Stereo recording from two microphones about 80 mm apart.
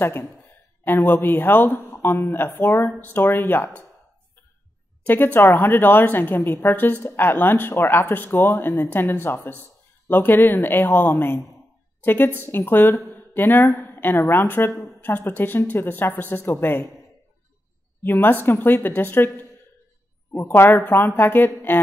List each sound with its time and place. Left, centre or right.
0.8 s speech: left
5.0 s a woman's voice: left
13.1 s a sound: left
13.7 s speech: left
18.0 s speech: left